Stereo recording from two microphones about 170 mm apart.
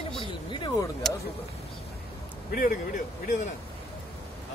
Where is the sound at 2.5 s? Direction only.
55° left (ahead or behind).